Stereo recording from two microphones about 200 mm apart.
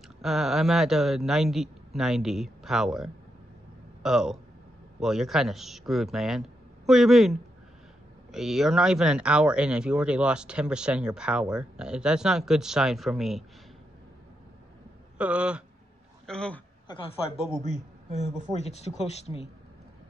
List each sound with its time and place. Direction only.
0.2 s speech: centre (ahead or behind)
15.1 s speech: 5° right (ahead or behind)
16.3 s speech: 5° left (ahead or behind)
18.5 s speech: 30° left (ahead or behind)